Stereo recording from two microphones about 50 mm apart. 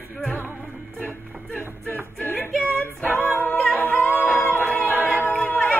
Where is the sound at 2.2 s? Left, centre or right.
Left.